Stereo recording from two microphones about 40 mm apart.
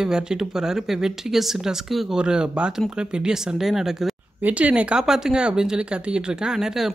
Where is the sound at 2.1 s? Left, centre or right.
Right.